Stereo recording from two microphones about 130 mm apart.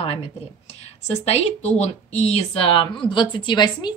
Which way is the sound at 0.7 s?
55° left (ahead or behind).